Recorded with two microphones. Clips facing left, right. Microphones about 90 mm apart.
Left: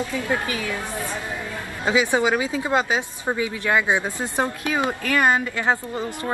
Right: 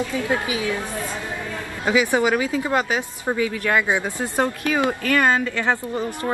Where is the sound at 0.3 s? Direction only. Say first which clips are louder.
Right 2 dB; 15° right (ahead or behind).